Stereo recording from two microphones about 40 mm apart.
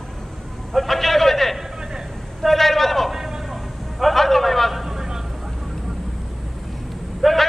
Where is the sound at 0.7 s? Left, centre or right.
Centre.